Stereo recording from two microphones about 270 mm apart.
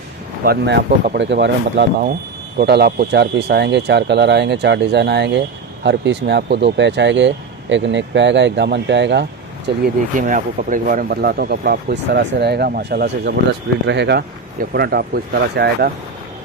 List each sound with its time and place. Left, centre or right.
0.5 s speech: right